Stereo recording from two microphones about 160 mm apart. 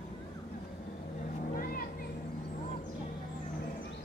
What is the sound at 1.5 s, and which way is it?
Vehicle, 65° left (ahead or behind).